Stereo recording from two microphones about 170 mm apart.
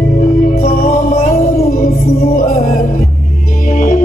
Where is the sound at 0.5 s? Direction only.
55° left (ahead or behind).